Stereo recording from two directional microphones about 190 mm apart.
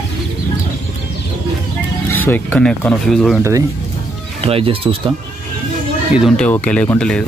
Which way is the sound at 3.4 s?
15° right (ahead or behind).